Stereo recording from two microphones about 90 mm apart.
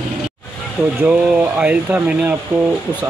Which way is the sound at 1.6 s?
15° right (ahead or behind).